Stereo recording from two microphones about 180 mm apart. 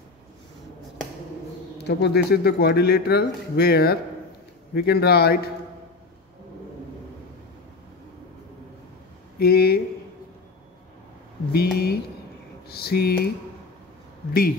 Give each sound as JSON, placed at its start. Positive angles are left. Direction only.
{"t": 1.9, "sound": "speech", "side_deg": 65}
{"t": 9.4, "sound": "speech", "side_deg": 60}
{"t": 11.5, "sound": "speech", "side_deg": 60}